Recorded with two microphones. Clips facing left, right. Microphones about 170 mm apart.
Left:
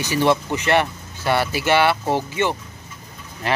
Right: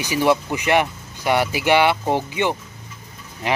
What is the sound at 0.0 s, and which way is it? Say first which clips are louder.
Speech: even; 10° right (ahead or behind).